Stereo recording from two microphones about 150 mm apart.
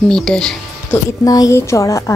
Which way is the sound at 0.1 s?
5° left (ahead or behind).